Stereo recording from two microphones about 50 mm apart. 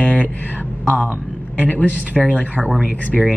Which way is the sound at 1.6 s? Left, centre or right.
Left.